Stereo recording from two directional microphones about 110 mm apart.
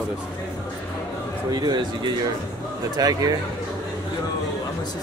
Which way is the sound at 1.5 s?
40° right (ahead or behind).